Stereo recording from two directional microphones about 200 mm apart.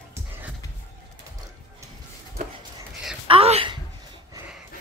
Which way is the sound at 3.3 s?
30° right (ahead or behind).